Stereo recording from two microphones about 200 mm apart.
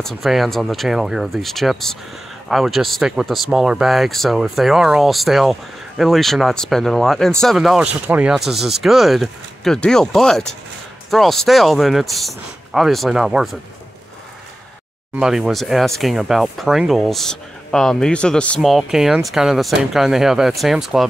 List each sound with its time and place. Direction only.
0.0 s speech: centre (ahead or behind)
15.1 s speech: 5° right (ahead or behind)